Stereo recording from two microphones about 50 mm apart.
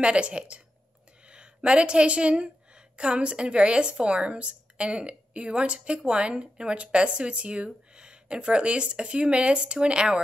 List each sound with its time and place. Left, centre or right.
0.0 s a woman's voice: right